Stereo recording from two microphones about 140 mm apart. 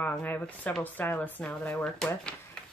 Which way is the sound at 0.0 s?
10° left (ahead or behind).